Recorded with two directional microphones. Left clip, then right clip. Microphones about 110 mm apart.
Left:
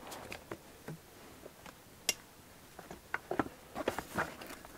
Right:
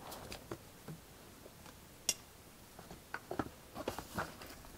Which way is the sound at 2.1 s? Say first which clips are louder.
Left 3 dB; 35° right (ahead or behind).